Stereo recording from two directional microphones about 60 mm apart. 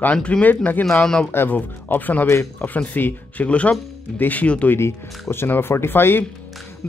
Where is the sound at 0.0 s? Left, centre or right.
Left.